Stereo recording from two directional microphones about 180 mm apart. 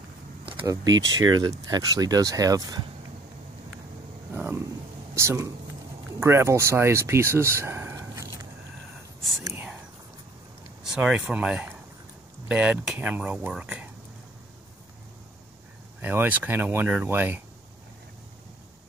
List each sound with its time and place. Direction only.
0.5 s speech: 25° right (ahead or behind)
4.3 s a sound: 10° right (ahead or behind)
5.1 s speech: 15° right (ahead or behind)
9.4 s whispering: 15° right (ahead or behind)
10.8 s speech: 5° right (ahead or behind)
16.0 s speech: 10° right (ahead or behind)